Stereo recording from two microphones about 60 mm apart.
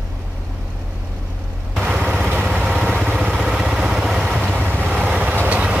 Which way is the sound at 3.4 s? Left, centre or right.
Centre.